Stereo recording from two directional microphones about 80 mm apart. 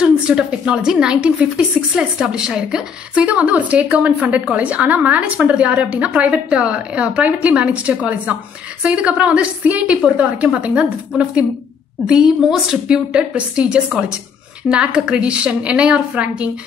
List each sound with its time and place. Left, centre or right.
0.0 s a woman's voice: centre